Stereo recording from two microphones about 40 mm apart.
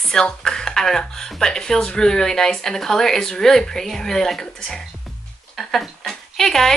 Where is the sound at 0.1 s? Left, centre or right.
Centre.